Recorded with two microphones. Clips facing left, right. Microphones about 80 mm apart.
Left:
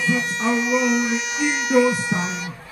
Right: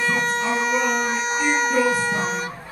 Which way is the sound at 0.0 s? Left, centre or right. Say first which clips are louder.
Even; right.